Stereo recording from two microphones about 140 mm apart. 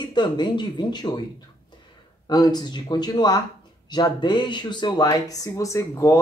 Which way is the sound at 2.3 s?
30° left (ahead or behind).